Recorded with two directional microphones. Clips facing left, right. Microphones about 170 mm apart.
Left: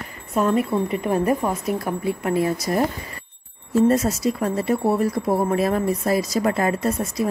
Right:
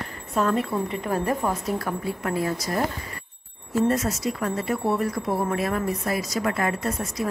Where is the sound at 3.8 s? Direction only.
30° left (ahead or behind).